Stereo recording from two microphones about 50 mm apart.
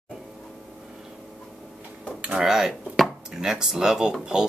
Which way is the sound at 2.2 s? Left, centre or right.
Right.